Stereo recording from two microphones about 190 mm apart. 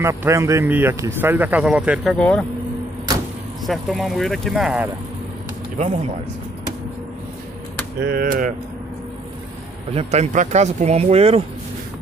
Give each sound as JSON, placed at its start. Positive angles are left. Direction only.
{"t": 0.0, "sound": "speech", "side_deg": -15}
{"t": 2.1, "sound": "speech", "side_deg": 5}
{"t": 3.6, "sound": "speech", "side_deg": 0}
{"t": 8.1, "sound": "a sound", "side_deg": -45}
{"t": 9.9, "sound": "speech", "side_deg": -35}